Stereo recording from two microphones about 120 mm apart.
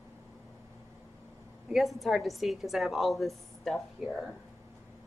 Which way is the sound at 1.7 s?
Centre (ahead or behind).